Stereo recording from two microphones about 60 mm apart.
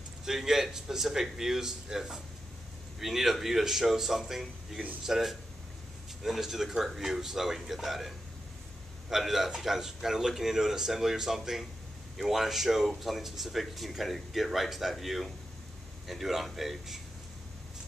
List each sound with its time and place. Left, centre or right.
0.2 s speech: centre
9.1 s speech: centre